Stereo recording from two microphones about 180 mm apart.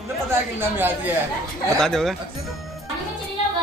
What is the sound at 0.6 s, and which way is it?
Speech, 10° right (ahead or behind).